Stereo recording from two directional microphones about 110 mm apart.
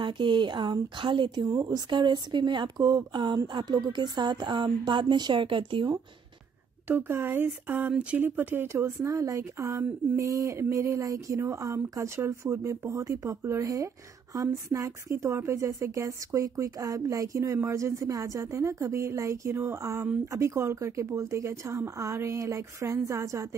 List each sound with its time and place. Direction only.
0.0 s speech: 45° right (ahead or behind)
6.9 s speech: 20° right (ahead or behind)